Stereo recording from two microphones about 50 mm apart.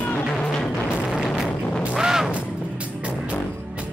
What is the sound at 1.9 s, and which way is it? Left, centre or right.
Music, centre.